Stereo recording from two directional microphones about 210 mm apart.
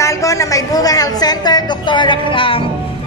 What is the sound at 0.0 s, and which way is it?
A woman's voice, 15° left (ahead or behind).